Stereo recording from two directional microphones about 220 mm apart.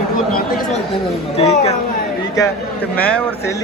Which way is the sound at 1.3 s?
30° left (ahead or behind).